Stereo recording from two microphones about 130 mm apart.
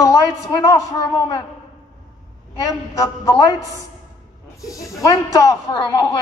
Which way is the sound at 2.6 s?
25° left (ahead or behind).